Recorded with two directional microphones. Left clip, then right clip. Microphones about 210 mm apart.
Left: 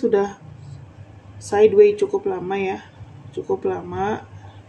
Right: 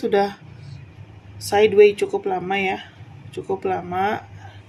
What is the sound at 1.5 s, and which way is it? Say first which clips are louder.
Speech: even; 5° right (ahead or behind).